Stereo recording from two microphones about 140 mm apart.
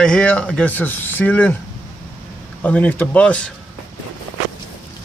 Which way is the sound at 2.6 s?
10° left (ahead or behind).